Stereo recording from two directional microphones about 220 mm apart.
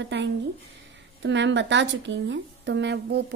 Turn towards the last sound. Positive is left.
turn(degrees=-50)  # may be behind; listen again after turning